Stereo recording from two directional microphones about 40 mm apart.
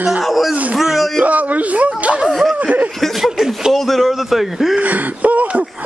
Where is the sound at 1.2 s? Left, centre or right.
Right.